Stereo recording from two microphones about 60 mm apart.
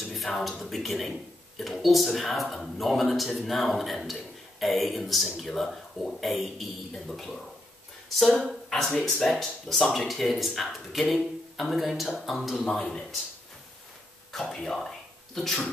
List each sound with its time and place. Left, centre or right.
0.0 s speech: centre
12.6 s speech: centre
14.3 s speech: centre